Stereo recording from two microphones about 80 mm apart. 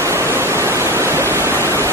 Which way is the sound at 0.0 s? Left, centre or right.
Right.